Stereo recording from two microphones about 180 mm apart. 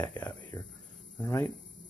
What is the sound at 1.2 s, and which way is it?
Speech, 10° left (ahead or behind).